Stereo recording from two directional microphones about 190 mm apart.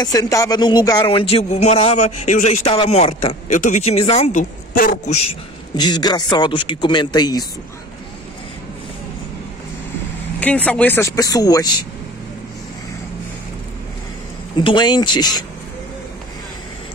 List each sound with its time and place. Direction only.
0.0 s speech: 20° left (ahead or behind); by 5.2 s 40° left (ahead or behind)
5.8 s a man's voice: 20° left (ahead or behind)
10.4 s speech: 5° left (ahead or behind)
14.6 s a man's voice: 25° left (ahead or behind)